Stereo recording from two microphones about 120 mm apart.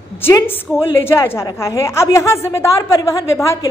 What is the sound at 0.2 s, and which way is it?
A woman's voice, 20° left (ahead or behind).